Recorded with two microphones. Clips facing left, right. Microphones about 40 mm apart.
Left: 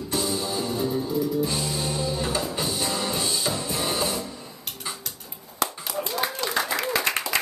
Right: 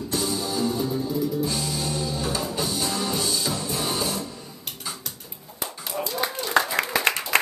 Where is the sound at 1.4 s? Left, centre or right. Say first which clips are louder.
Even; left.